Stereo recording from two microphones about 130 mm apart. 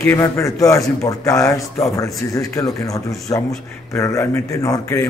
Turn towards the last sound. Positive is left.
turn(degrees=25)  # may be behind; listen again after turning